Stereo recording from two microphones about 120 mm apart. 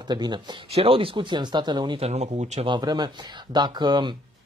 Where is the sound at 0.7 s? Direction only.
50° right (ahead or behind); by 2.0 s 35° right (ahead or behind).